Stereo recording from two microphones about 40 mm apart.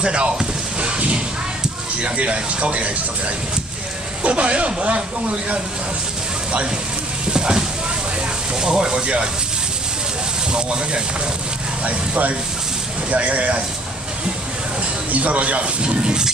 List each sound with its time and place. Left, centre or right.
0.0 s speech: right
0.7 s a sound: right
2.0 s speech: right
4.2 s speech: right
7.3 s a sound: centre
8.5 s speech: centre
10.5 s speech: right
11.8 s speech: right
15.0 s speech: right